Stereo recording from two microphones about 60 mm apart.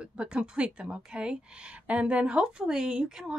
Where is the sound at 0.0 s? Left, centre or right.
Centre.